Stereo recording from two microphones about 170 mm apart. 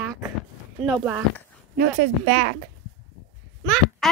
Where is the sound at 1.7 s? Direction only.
55° right (ahead or behind).